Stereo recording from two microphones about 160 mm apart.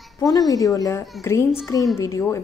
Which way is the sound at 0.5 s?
20° left (ahead or behind).